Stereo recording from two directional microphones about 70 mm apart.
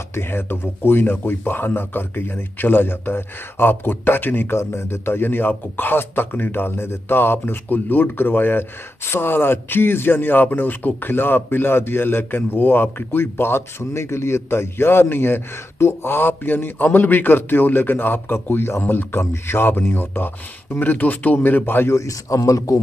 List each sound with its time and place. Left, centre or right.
0.1 s speech: left
21.9 s a man's voice: left